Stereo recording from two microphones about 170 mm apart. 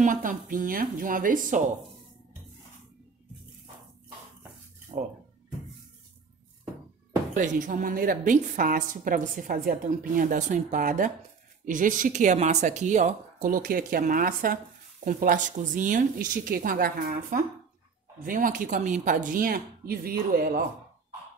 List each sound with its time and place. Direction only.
0.0 s a woman's voice: 50° right (ahead or behind)
4.9 s speech: 35° right (ahead or behind)
7.3 s a woman's voice: 50° right (ahead or behind)